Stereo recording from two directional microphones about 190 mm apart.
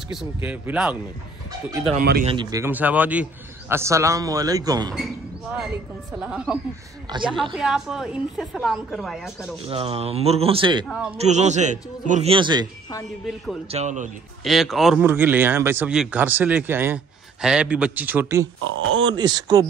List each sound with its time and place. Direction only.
0.1 s speech: 5° right (ahead or behind)
2.0 s speech: 50° right (ahead or behind)
2.2 s speech: 25° right (ahead or behind)
2.6 s speech: 10° right (ahead or behind)
4.9 s basketball bounce: centre (ahead or behind)
6.1 s a woman's voice: 5° right (ahead or behind)
7.1 s speech: 25° right (ahead or behind)
7.5 s a woman's voice: centre (ahead or behind)
9.7 s speech: 30° right (ahead or behind)
10.9 s a woman's voice: 5° right (ahead or behind)
11.1 s a man's voice: 35° right (ahead or behind)
13.7 s a man's voice: 35° right (ahead or behind)
14.4 s a woman's voice: centre (ahead or behind); by 19.6 s 20° right (ahead or behind)